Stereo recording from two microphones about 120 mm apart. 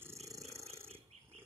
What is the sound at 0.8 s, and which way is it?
Wild animals, 55° right (ahead or behind).